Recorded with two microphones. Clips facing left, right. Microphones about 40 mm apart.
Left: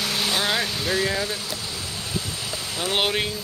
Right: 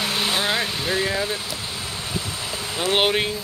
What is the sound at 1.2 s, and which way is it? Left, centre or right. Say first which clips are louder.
Vehicle: right 2 dB; right.